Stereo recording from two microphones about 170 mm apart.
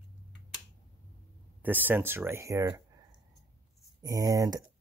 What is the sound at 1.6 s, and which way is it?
Speech, 10° right (ahead or behind).